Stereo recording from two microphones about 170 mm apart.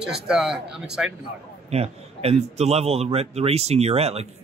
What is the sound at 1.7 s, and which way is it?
Speech, 35° right (ahead or behind).